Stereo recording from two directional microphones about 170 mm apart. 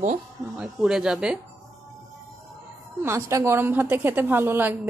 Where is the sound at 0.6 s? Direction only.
5° right (ahead or behind).